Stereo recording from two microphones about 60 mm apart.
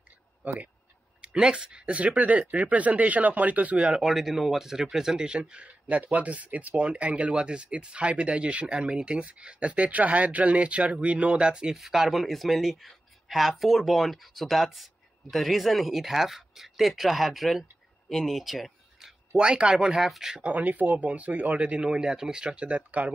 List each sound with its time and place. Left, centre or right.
1.2 s speech: centre
4.0 s speech: centre
19.3 s speech: centre
20.4 s speech: right